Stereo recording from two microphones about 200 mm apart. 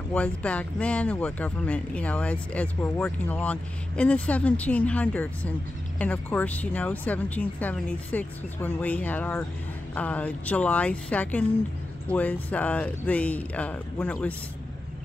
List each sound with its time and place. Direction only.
0.1 s speech: 5° left (ahead or behind)